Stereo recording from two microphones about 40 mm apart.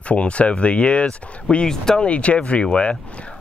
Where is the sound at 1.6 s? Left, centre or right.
Centre.